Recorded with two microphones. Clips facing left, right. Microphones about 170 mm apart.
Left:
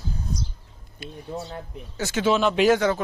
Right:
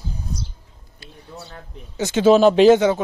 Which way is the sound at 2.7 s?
20° right (ahead or behind).